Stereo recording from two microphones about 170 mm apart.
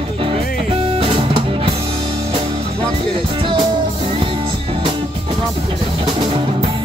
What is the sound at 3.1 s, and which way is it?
Music, 30° right (ahead or behind).